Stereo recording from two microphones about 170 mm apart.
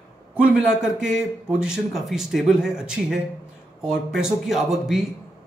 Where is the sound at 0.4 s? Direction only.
5° right (ahead or behind).